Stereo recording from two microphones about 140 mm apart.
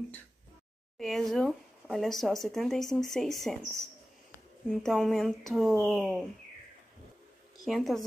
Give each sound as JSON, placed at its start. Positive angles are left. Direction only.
{"t": 0.9, "sound": "speech", "side_deg": 0}
{"t": 7.6, "sound": "speech", "side_deg": 0}